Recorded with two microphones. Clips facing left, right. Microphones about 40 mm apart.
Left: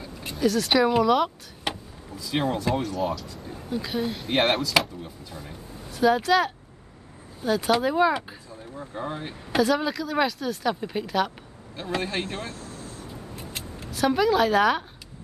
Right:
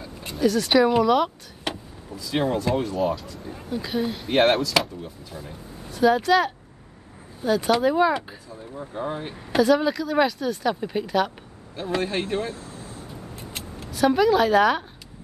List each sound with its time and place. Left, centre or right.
0.2 s speech: centre
12.3 s speech: centre
13.5 s speech: centre